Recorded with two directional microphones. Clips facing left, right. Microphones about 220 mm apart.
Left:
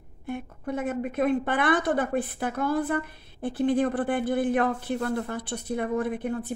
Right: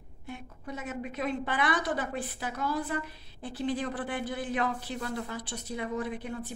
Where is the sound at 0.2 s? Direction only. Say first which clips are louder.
Left 9 dB; 55° left (ahead or behind).